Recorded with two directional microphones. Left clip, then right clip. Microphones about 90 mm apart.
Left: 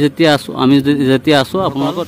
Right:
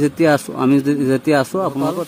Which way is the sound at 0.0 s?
20° left (ahead or behind).